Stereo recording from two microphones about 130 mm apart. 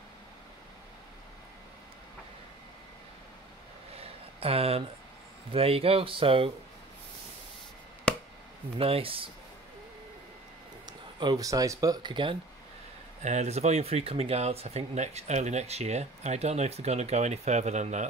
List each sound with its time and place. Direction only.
4.0 s a sound: 50° right (ahead or behind)
5.5 s speech: 50° right (ahead or behind)
8.7 s speech: 45° right (ahead or behind)
10.9 s speech: 35° right (ahead or behind)
13.2 s speech: 60° right (ahead or behind)